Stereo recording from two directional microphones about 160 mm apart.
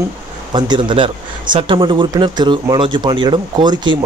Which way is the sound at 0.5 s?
25° right (ahead or behind).